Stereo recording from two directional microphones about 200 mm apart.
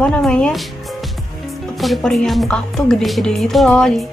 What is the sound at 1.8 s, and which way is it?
Speech, centre (ahead or behind).